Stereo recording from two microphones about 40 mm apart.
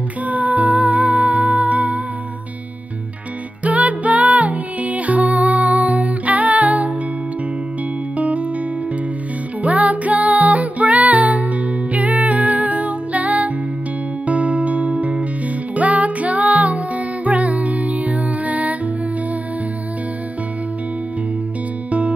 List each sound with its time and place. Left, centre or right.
0.2 s music: right
3.6 s music: right
8.2 s music: right
9.6 s music: right